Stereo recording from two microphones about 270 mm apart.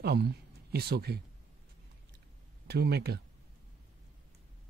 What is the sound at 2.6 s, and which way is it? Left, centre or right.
Speech, right.